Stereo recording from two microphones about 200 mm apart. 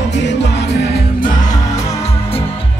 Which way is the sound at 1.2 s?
20° left (ahead or behind).